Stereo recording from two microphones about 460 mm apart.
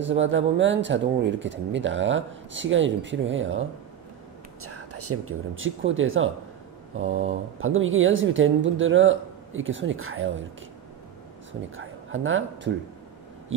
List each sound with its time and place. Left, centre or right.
0.0 s speech: right
4.6 s speech: right
7.0 s mantra: centre
7.5 s speech: right
11.7 s speech: right